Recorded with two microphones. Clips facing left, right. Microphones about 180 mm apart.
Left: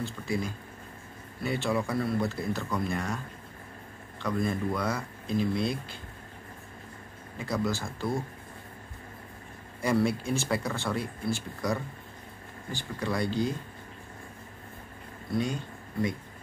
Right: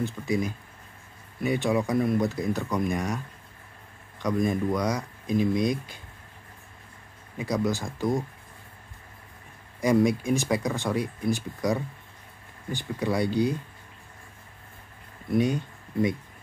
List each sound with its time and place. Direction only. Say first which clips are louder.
0.0 s speech: right 5 dB; 15° right (ahead or behind)
4.2 s speech: right 4 dB; 15° right (ahead or behind)
7.3 s speech: right 3 dB; 15° right (ahead or behind)
9.8 s speech: right 5 dB; 15° right (ahead or behind)
15.3 s speech: right 6 dB; 20° right (ahead or behind)